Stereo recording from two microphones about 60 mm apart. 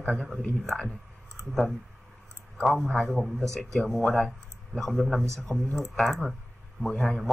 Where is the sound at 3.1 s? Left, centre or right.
Centre.